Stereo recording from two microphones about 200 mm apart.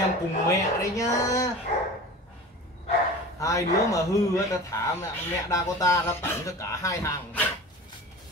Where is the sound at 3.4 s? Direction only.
15° left (ahead or behind).